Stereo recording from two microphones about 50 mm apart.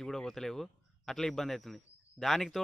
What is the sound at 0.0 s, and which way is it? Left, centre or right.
A man's voice, centre.